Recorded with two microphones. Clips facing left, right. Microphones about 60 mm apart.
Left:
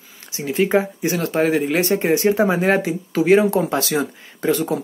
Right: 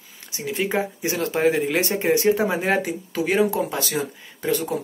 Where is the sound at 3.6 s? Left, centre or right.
Left.